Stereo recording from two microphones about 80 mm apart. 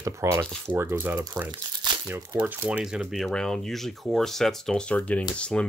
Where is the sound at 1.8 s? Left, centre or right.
Right.